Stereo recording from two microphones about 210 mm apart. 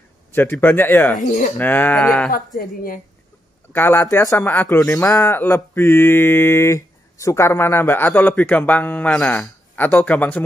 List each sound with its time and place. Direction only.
0.3 s speech: 10° left (ahead or behind)
1.1 s speech: 40° left (ahead or behind)
1.6 s speech: 10° left (ahead or behind)
2.3 s speech: 45° left (ahead or behind)
3.7 s speech: 10° left (ahead or behind)